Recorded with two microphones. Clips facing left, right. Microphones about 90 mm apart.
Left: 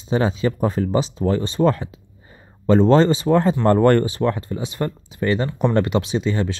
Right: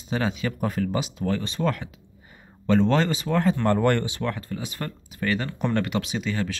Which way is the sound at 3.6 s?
40° left (ahead or behind).